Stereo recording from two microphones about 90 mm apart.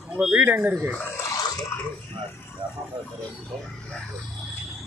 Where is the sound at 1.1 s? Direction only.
35° left (ahead or behind).